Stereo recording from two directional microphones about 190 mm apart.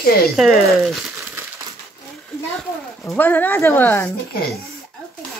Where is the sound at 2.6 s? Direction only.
5° left (ahead or behind).